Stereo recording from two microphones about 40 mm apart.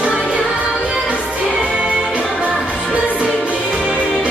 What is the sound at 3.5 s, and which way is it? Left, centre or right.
Music, left.